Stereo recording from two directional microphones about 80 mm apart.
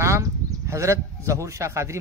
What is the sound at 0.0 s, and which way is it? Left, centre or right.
A man's voice, right.